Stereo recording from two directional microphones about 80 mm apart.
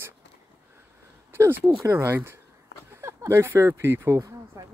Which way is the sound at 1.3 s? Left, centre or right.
Right.